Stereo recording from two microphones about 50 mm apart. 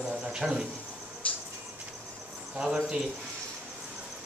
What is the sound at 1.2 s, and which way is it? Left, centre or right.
Music, left.